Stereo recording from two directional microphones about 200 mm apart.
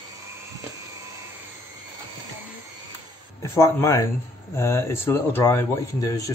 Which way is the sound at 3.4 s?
15° left (ahead or behind).